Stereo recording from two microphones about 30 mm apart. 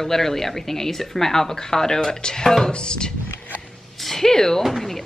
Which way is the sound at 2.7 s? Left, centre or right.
Left.